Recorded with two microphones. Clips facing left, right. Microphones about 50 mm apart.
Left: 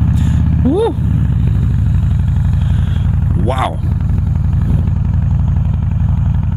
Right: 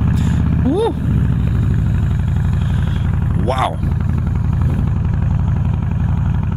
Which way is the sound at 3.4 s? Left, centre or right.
Centre.